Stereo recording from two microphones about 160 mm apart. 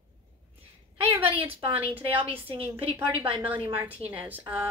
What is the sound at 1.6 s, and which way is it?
Speech, 35° right (ahead or behind).